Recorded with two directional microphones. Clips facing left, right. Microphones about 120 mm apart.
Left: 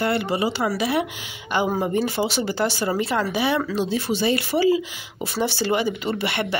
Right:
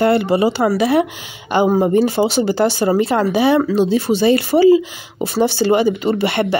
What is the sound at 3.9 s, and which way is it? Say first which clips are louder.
Speech: right 6 dB; 45° right (ahead or behind).